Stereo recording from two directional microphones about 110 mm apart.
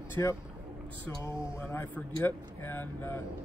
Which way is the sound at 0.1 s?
25° left (ahead or behind).